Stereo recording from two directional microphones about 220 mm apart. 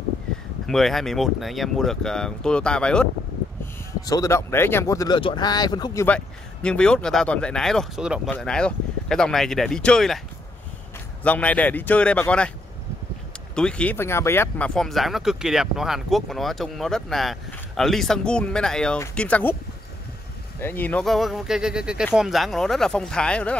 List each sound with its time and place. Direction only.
0.7 s speech: centre (ahead or behind)
4.0 s speech: 15° left (ahead or behind)
6.0 s speech: 5° left (ahead or behind)
11.2 s speech: 5° left (ahead or behind)
13.6 s speech: 5° left (ahead or behind)
20.6 s speech: 10° left (ahead or behind)